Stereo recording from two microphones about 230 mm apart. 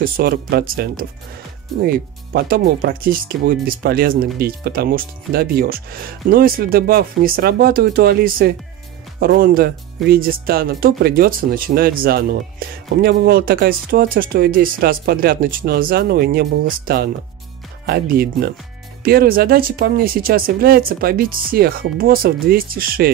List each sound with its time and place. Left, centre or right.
0.0 s speech: right
2.3 s speech: right